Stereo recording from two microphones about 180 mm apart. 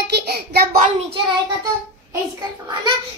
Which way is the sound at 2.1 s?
25° right (ahead or behind).